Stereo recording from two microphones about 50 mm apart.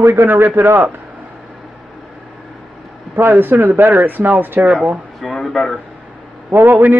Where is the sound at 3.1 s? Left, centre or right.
Right.